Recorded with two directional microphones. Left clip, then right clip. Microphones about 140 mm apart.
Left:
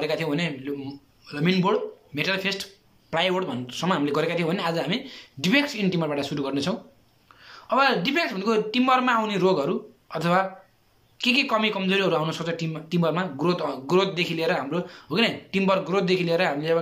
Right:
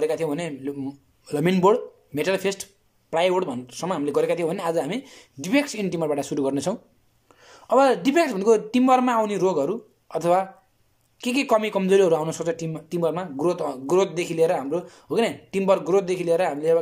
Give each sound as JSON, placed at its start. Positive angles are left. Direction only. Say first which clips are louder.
{"t": 0.0, "sound": "a man's voice", "louder": "right 2 dB", "side_deg": -40}